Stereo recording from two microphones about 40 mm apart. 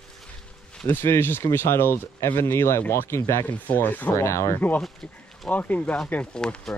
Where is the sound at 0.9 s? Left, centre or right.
Left.